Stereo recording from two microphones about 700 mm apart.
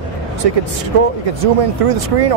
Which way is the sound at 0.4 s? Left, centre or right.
Right.